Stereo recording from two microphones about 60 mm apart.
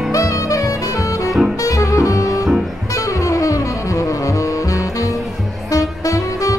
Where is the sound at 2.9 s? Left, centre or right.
Left.